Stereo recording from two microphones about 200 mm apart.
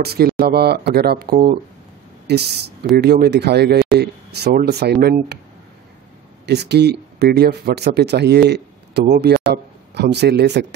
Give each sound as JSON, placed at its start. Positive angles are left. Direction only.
{"t": 0.0, "sound": "speech", "side_deg": -50}
{"t": 6.4, "sound": "speech", "side_deg": -55}